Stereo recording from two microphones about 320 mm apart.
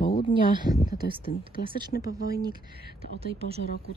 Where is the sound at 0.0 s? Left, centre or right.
Left.